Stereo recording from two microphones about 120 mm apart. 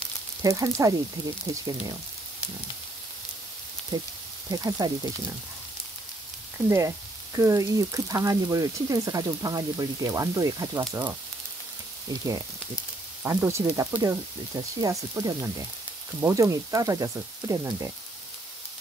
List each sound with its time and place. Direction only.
0.4 s speech: 30° right (ahead or behind)
3.9 s speech: 30° right (ahead or behind)
7.3 s speech: 25° right (ahead or behind)